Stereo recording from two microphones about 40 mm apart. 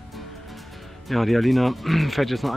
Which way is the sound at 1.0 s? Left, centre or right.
Centre.